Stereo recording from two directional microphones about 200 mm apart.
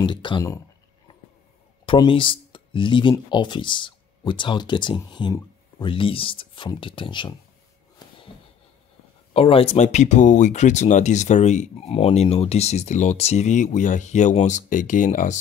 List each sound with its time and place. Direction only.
0.0 s speech: 25° left (ahead or behind)
1.9 s speech: 25° left (ahead or behind)
9.3 s speech: 30° left (ahead or behind)